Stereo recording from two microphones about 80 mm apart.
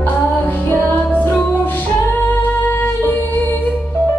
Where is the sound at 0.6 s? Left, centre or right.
Left.